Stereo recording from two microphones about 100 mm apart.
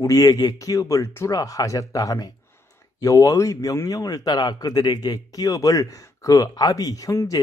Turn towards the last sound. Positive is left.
turn(degrees=35)  # may be behind; listen again after turning